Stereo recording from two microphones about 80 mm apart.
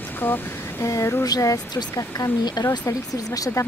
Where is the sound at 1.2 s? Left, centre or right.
Left.